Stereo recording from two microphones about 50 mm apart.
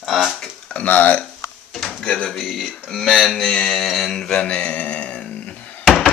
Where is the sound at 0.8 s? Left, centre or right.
Left.